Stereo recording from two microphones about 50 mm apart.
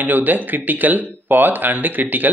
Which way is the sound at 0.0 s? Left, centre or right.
Right.